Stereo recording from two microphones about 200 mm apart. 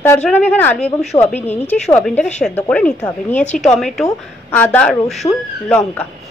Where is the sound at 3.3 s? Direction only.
35° left (ahead or behind).